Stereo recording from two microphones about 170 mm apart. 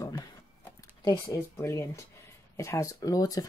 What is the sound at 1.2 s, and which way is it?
Speech, 20° left (ahead or behind).